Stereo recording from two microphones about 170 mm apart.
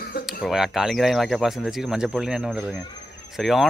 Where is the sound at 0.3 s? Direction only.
Centre (ahead or behind).